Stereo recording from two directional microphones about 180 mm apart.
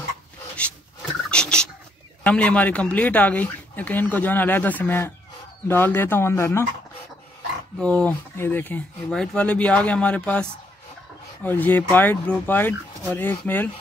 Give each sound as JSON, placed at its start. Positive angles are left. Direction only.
{"t": 1.3, "sound": "fowl", "side_deg": 5}
{"t": 2.2, "sound": "speech", "side_deg": 5}
{"t": 7.8, "sound": "speech", "side_deg": 5}
{"t": 11.4, "sound": "speech", "side_deg": 10}